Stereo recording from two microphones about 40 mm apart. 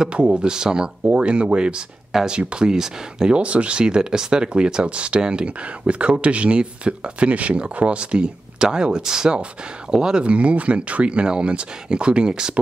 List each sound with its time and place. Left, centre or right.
0.1 s speech: right
0.4 s speech: centre
10.2 s speech: right